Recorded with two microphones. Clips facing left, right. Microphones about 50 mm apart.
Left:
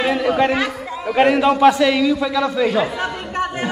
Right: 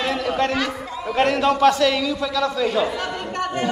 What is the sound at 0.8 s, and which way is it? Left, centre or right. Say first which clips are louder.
A man's voice: left 6 dB; centre.